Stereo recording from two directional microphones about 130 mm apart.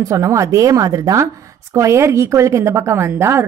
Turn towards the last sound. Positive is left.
turn(degrees=-20)  # may be behind; listen again after turning